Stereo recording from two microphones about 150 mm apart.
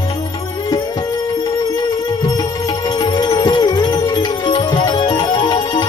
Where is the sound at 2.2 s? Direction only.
25° left (ahead or behind).